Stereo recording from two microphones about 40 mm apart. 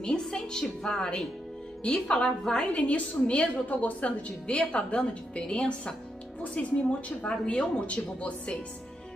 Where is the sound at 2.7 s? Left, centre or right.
Left.